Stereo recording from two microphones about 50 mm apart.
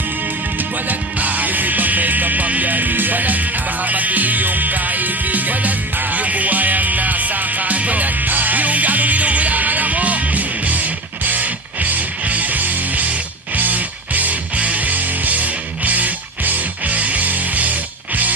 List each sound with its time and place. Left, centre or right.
0.8 s music: right